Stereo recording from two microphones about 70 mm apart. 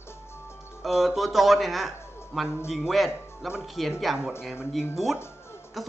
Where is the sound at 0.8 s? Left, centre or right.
Centre.